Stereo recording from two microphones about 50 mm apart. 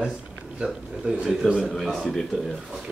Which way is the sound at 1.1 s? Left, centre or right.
Right.